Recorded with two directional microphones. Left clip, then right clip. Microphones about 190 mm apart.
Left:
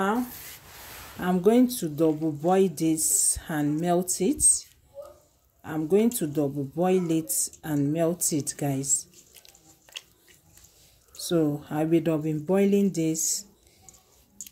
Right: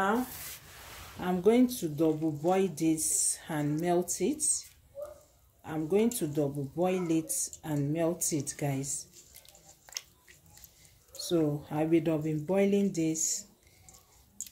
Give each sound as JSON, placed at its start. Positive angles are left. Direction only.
{"t": 1.1, "sound": "speech", "side_deg": 40}
{"t": 11.1, "sound": "speech", "side_deg": 40}